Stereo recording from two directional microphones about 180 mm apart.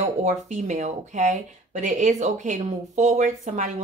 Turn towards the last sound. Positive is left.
turn(degrees=-40)  # may be behind; listen again after turning